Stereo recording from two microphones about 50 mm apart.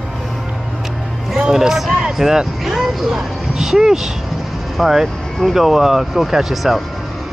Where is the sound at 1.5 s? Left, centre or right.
Centre.